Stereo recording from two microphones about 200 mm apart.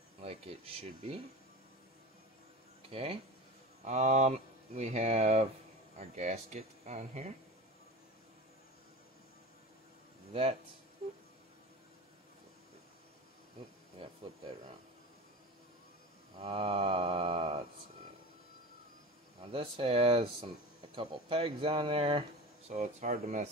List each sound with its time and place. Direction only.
0.2 s speech: 30° right (ahead or behind)
2.9 s speech: 30° right (ahead or behind)
13.9 s a sound: 25° right (ahead or behind)
16.3 s speech: 30° right (ahead or behind)
19.4 s speech: 30° right (ahead or behind)